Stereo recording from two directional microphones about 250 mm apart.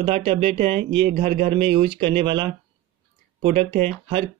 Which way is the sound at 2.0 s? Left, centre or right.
Centre.